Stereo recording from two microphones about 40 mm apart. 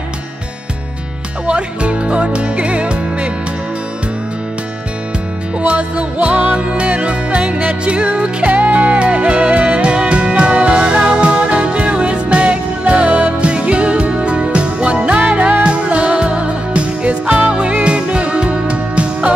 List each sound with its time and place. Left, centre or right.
1.5 s music: right
5.7 s music: right
8.5 s music: right
8.9 s music: right
15.1 s music: right
15.6 s music: right